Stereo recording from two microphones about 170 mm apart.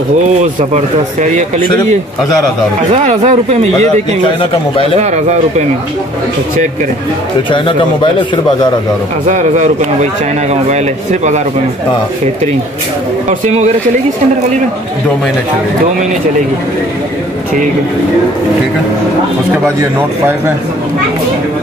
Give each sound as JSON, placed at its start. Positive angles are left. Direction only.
{"t": 0.3, "sound": "speech", "side_deg": -45}
{"t": 2.9, "sound": "speech", "side_deg": -45}
{"t": 7.5, "sound": "speech", "side_deg": 30}
{"t": 9.3, "sound": "speech", "side_deg": -45}
{"t": 13.3, "sound": "speech", "side_deg": -40}
{"t": 19.8, "sound": "a man's voice", "side_deg": -15}